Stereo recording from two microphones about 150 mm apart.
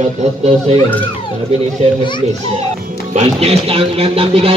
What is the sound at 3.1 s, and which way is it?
Speech, 45° right (ahead or behind).